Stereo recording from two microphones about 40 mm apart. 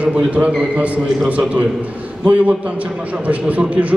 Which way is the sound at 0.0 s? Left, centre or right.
Right.